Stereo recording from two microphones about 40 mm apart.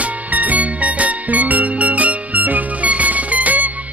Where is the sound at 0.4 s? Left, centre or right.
Right.